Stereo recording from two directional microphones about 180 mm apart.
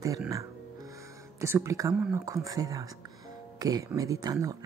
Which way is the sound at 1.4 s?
15° right (ahead or behind).